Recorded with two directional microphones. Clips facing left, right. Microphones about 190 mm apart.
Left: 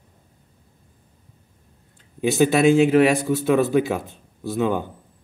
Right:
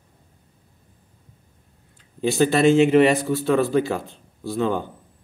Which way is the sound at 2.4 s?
10° left (ahead or behind).